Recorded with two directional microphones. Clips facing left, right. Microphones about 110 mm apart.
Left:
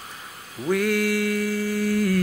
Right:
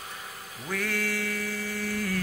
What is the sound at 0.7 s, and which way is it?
Mantra, 10° left (ahead or behind).